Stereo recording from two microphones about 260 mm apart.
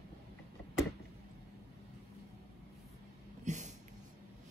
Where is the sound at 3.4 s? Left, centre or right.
Right.